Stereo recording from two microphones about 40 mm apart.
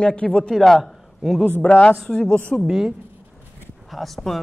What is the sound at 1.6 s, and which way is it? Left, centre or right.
Speech, left.